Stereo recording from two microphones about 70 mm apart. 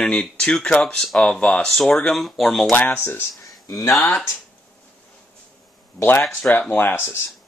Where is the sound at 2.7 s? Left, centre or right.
Left.